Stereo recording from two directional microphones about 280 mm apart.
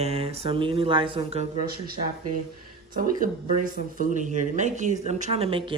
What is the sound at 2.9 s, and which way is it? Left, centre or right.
Speech, right.